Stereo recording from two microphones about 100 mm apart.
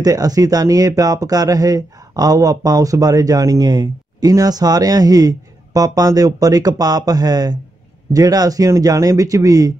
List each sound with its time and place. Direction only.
0.0 s speech: 40° right (ahead or behind)